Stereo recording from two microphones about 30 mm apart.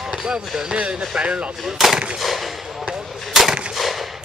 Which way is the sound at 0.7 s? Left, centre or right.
Right.